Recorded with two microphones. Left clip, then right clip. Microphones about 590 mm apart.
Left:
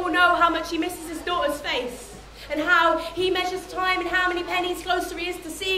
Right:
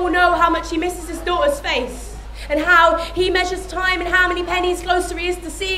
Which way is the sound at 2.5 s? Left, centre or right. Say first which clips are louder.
Right 6 dB; right.